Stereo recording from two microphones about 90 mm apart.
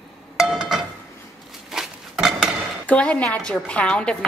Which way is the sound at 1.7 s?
5° right (ahead or behind).